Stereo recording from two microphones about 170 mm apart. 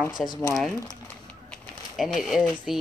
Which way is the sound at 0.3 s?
20° left (ahead or behind).